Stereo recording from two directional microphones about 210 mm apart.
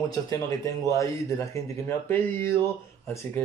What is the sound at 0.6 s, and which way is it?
Speech, 15° left (ahead or behind).